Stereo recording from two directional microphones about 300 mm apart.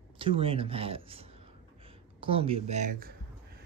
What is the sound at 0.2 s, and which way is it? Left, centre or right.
Speech, centre.